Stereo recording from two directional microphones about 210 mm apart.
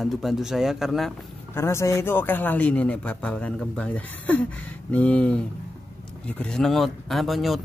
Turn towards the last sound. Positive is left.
turn(degrees=0)  # may be behind; listen again after turning